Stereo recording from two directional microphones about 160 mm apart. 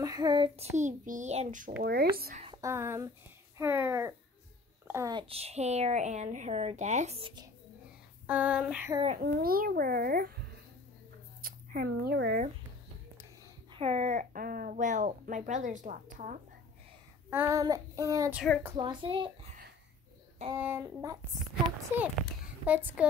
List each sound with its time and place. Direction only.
0.0 s a child's voice: 25° right (ahead or behind); by 1.7 s 45° right (ahead or behind)
1.8 s a child's voice: 70° right (ahead or behind)
2.6 s a sound: 15° right (ahead or behind)
5.1 s speech: 35° right (ahead or behind)
8.3 s a sound: 10° right (ahead or behind)
9.2 s a child's voice: 65° right (ahead or behind)
11.4 s speech: 60° right (ahead or behind); by 12.4 s 85° right
13.7 s speech: 40° right (ahead or behind)
14.3 s speech: 60° right (ahead or behind)
17.3 s child singing: 15° right (ahead or behind)
18.8 s a child's voice: 30° right (ahead or behind)
20.5 s a sound: 15° right (ahead or behind)